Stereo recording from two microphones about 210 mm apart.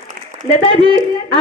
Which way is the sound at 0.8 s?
20° left (ahead or behind).